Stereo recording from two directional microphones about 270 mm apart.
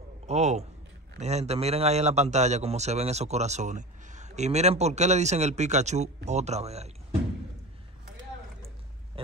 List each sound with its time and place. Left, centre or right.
0.3 s a man's voice: right